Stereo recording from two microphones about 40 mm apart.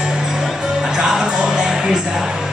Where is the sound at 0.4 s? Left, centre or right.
Centre.